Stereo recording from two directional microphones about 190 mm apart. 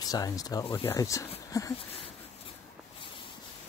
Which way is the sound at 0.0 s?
20° left (ahead or behind).